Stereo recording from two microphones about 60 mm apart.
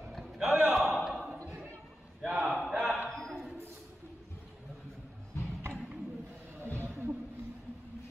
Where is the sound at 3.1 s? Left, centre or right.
Centre.